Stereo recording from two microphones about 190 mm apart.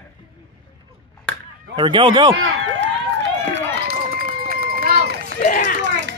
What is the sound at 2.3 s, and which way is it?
Run, 80° right.